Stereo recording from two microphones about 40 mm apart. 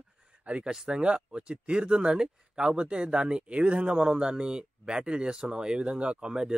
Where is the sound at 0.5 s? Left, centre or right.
Right.